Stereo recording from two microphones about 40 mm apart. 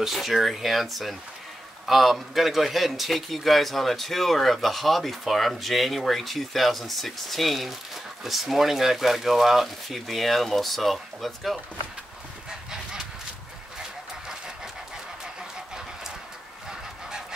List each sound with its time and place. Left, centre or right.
0.0 s a man's voice: centre
14.2 s vehicle: centre